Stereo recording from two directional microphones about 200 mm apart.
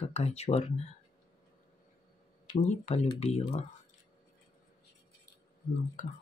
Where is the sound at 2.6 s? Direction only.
35° left (ahead or behind).